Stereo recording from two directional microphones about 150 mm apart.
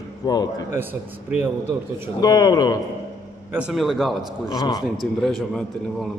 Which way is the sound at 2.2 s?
25° left (ahead or behind).